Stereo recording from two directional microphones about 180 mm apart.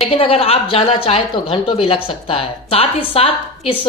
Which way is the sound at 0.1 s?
30° left (ahead or behind).